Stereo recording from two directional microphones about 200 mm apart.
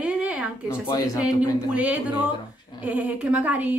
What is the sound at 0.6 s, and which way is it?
Speech, 15° left (ahead or behind).